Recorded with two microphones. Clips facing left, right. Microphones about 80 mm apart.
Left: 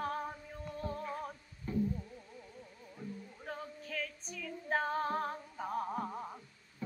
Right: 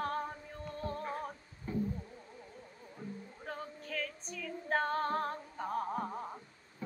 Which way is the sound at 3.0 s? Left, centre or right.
Right.